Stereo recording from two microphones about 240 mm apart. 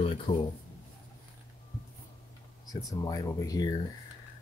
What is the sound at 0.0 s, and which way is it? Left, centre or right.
Speech, left.